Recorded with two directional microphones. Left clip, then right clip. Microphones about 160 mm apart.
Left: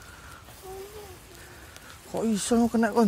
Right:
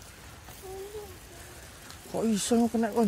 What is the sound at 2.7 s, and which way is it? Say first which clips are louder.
Speech: left 4 dB; 35° left (ahead or behind).